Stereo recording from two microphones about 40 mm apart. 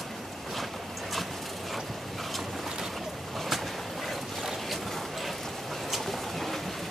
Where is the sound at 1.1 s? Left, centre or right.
Centre.